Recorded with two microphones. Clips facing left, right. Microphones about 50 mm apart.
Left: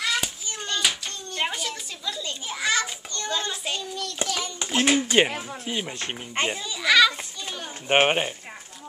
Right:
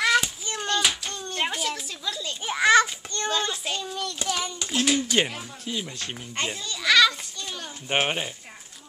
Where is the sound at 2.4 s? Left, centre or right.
Right.